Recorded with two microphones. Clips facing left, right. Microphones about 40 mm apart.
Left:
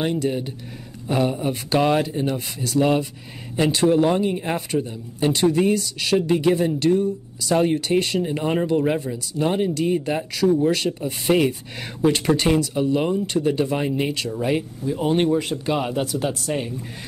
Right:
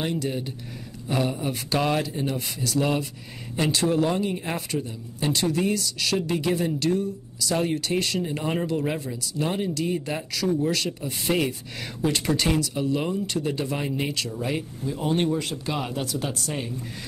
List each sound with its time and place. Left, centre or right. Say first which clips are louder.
0.0 s speech: left 5 dB; centre
3.9 s speech: left 5 dB; centre